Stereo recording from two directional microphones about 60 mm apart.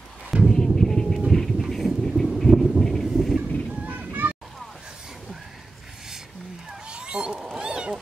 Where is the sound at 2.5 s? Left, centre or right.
Centre.